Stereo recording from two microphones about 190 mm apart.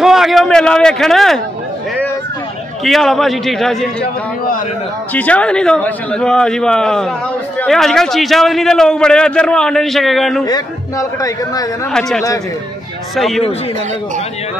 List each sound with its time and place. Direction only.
0.0 s a sound: centre (ahead or behind)
2.8 s a man's voice: centre (ahead or behind)
5.1 s a man's voice: 5° left (ahead or behind)
10.4 s speech: 20° left (ahead or behind)
11.9 s a man's voice: centre (ahead or behind)